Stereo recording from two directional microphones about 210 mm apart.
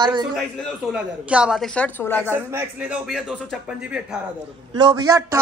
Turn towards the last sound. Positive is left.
turn(degrees=-15)  # may be behind; listen again after turning